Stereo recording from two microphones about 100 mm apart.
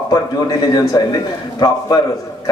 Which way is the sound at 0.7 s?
45° left (ahead or behind).